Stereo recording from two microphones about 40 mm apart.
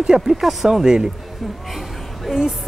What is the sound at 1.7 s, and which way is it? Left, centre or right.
Music, centre.